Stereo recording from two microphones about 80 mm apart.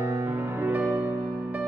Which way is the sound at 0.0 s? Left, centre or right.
Right.